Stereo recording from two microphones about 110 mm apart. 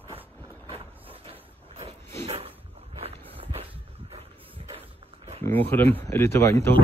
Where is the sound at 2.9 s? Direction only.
60° right (ahead or behind).